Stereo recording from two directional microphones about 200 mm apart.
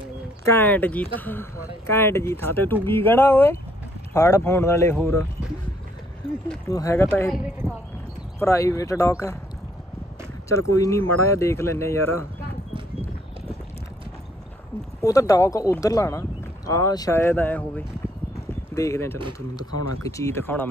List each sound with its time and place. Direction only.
0.5 s speech: 10° left (ahead or behind)
6.7 s speech: 15° left (ahead or behind)
7.2 s speech: centre (ahead or behind)
8.4 s speech: 15° left (ahead or behind)
10.5 s speech: 15° left (ahead or behind)
15.0 s speech: 15° left (ahead or behind)